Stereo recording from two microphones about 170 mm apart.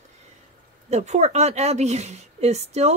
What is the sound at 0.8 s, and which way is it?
Speech, 40° right (ahead or behind).